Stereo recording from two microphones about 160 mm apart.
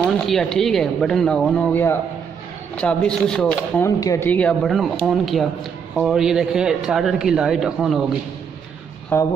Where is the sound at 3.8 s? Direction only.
20° left (ahead or behind); by 8.0 s 5° right (ahead or behind).